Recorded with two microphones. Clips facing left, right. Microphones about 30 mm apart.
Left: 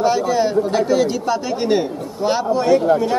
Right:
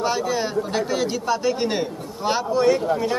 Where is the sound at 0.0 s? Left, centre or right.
Centre.